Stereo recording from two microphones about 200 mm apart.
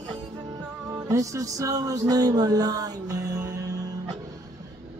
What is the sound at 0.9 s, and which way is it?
Music, 15° right (ahead or behind).